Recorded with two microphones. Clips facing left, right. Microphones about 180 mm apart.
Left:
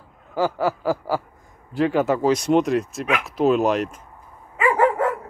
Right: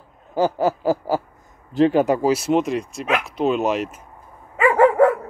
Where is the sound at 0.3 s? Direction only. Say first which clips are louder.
Right 3 dB; 20° right (ahead or behind).